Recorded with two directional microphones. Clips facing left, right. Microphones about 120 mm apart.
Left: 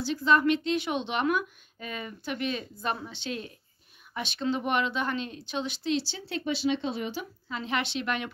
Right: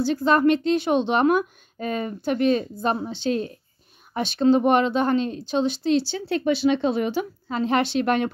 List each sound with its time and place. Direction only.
0.0 s a woman's voice: 45° right (ahead or behind); by 7.5 s 60° right (ahead or behind)
7.5 s a woman's voice: 40° right (ahead or behind)